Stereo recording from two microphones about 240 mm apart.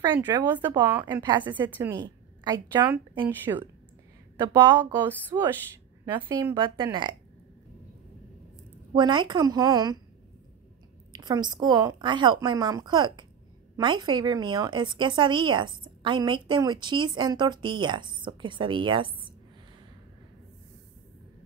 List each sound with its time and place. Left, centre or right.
0.0 s a woman's voice: centre
2.9 s a woman's voice: centre
6.5 s a woman's voice: centre
8.9 s a woman's voice: centre
11.1 s a woman's voice: centre